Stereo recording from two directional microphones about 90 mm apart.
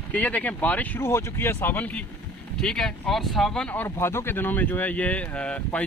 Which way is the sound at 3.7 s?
25° left (ahead or behind).